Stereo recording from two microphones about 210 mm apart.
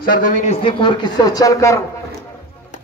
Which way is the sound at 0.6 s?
20° left (ahead or behind).